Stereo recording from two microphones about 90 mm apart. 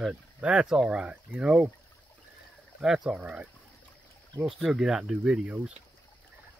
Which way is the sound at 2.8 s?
5° right (ahead or behind).